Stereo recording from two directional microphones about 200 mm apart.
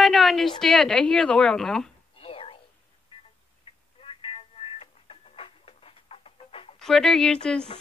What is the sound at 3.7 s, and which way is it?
Telephone, 25° left (ahead or behind).